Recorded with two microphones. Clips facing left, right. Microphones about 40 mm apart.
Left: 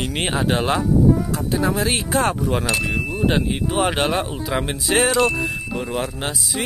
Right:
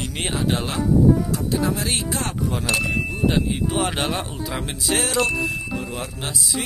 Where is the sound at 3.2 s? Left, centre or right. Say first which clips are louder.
Left 1 dB; left.